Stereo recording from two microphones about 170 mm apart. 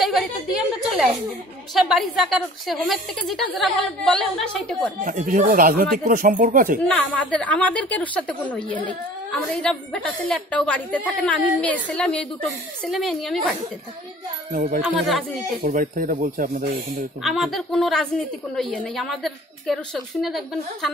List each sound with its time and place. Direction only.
0.0 s a woman's voice: centre (ahead or behind)
5.0 s speech: 50° right (ahead or behind)
6.9 s a woman's voice: 5° left (ahead or behind)
14.5 s speech: 50° right (ahead or behind)
15.0 s a woman's voice: centre (ahead or behind)
15.6 s speech: 55° right (ahead or behind)
17.2 s a woman's voice: centre (ahead or behind)